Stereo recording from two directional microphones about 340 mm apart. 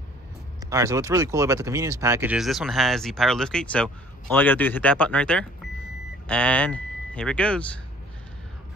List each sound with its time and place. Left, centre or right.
0.7 s speech: centre